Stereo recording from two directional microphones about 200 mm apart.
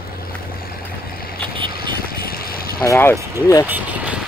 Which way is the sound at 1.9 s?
50° left (ahead or behind).